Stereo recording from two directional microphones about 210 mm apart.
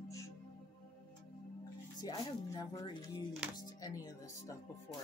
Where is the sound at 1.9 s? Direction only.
20° left (ahead or behind).